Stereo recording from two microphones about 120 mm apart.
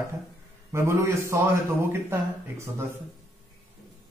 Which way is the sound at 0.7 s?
20° right (ahead or behind).